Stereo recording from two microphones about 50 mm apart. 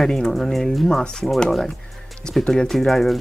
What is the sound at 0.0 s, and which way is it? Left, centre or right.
Speech, centre.